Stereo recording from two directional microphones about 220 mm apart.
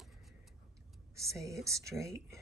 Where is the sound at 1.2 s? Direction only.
15° right (ahead or behind).